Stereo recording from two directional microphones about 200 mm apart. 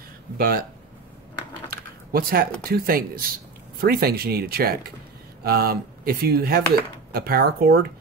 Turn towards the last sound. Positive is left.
turn(degrees=-50)  # may be behind; listen again after turning